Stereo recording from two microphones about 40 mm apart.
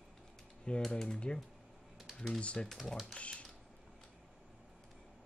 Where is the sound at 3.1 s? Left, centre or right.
Left.